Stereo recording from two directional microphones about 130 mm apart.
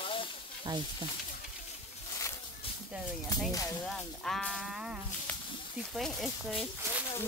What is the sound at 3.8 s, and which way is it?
Speech, 5° left (ahead or behind).